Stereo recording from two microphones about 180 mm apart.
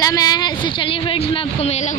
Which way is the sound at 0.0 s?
20° left (ahead or behind).